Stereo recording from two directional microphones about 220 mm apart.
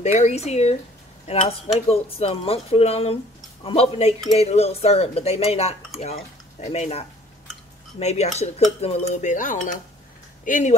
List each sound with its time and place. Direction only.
0.0 s speech: 30° left (ahead or behind)
8.8 s dishes: 30° left (ahead or behind)
10.4 s speech: 35° left (ahead or behind)